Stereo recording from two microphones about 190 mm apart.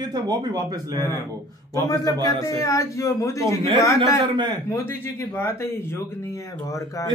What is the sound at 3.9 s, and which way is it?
Speech, 25° right (ahead or behind).